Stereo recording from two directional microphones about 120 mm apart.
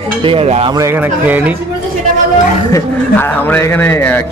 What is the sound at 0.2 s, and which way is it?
Cutlery, 55° right (ahead or behind).